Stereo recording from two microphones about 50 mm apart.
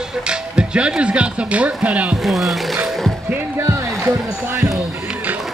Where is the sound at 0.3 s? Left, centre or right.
Centre.